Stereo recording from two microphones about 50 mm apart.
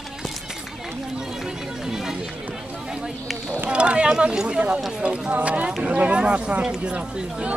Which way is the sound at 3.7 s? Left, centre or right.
Right.